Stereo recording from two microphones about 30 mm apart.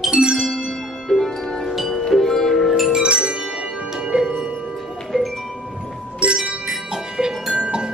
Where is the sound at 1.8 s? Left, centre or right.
Centre.